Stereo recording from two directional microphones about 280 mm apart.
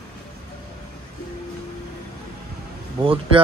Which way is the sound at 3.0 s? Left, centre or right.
Centre.